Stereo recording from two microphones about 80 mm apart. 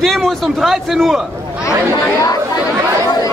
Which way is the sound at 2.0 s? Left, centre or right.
Left.